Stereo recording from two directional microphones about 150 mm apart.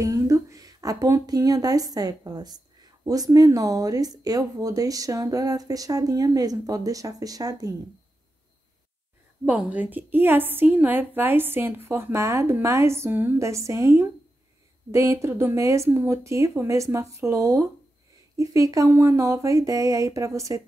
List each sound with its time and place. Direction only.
0.0 s speech: 20° right (ahead or behind)
9.4 s a woman's voice: 10° right (ahead or behind)